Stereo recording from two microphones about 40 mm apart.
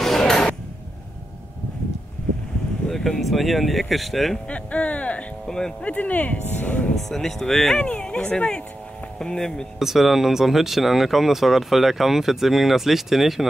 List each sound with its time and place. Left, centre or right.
0.2 s a sound: centre
2.9 s speech: centre
4.5 s speech: left
5.5 s speech: left
5.9 s speech: left
7.0 s speech: centre
7.7 s speech: left
9.8 s speech: centre